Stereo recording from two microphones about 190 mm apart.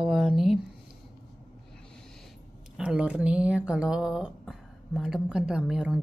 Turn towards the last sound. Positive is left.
turn(degrees=-5)  # may be behind; listen again after turning